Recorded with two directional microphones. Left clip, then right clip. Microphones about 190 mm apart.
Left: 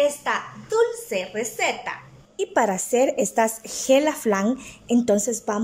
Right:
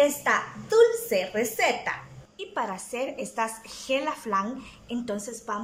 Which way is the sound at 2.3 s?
40° left (ahead or behind).